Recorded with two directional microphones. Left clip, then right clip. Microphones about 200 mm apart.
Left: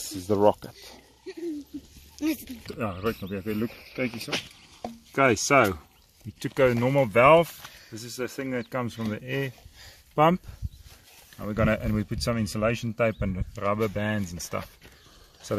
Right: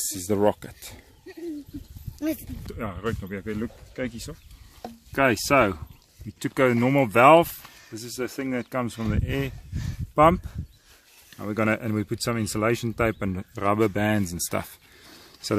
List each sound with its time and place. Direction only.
0.0 s speech: 15° right (ahead or behind)
2.7 s speech: 10° left (ahead or behind)
5.1 s speech: 5° left (ahead or behind)
6.4 s speech: 15° right (ahead or behind)
12.5 s speech: 25° right (ahead or behind)
13.7 s speech: 45° right (ahead or behind)